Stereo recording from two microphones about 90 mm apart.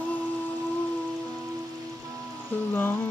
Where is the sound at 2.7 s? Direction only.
25° left (ahead or behind).